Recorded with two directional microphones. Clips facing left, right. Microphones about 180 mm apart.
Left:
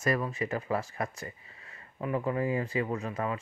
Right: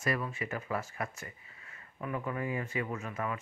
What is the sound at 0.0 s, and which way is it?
Speech, 40° left (ahead or behind).